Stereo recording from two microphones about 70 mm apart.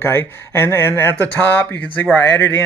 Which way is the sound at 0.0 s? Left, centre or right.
Left.